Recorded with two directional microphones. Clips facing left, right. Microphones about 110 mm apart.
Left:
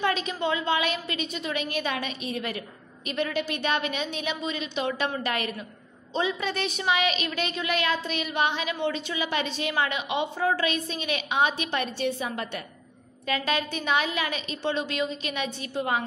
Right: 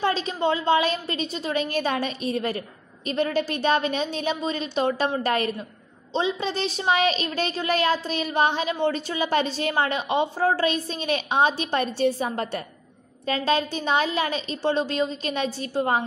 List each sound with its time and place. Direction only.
0.0 s a woman's voice: 30° right (ahead or behind)